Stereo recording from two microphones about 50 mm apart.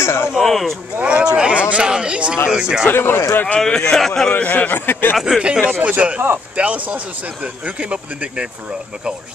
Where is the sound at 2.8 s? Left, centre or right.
Left.